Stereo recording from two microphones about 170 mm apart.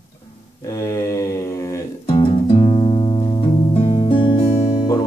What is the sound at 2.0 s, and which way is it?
Music, 35° left (ahead or behind).